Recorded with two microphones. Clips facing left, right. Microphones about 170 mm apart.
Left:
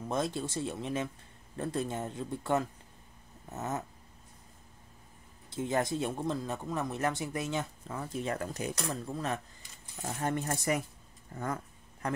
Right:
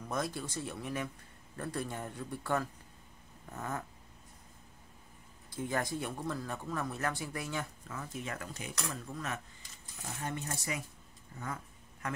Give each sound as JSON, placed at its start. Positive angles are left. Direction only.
{"t": 0.1, "sound": "speech", "side_deg": 25}
{"t": 5.5, "sound": "speech", "side_deg": 20}
{"t": 10.2, "sound": "speech", "side_deg": 55}